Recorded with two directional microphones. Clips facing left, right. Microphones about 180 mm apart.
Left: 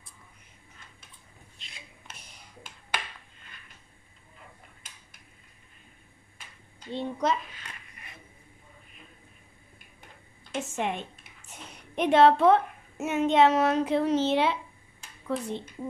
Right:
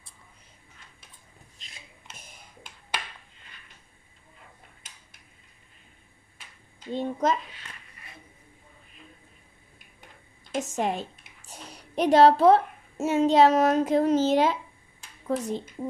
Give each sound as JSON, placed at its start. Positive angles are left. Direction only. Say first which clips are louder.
{"t": 1.6, "sound": "a sound", "louder": "left 1 dB", "side_deg": -45}
{"t": 6.9, "sound": "a child's voice", "louder": "right 2 dB", "side_deg": -45}
{"t": 10.5, "sound": "a woman's voice", "louder": "right 3 dB", "side_deg": -40}